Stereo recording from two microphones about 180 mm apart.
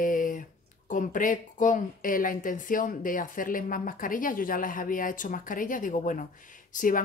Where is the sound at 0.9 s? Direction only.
45° left (ahead or behind).